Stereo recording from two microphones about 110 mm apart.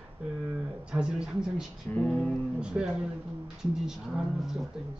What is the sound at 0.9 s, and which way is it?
Speech, 10° right (ahead or behind).